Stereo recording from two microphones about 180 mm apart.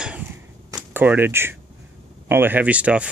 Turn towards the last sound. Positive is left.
turn(degrees=-5)  # may be behind; listen again after turning